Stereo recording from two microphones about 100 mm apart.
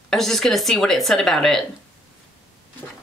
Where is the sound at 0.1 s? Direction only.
5° left (ahead or behind).